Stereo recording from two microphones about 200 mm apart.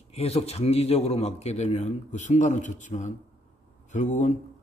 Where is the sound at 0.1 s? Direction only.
30° left (ahead or behind).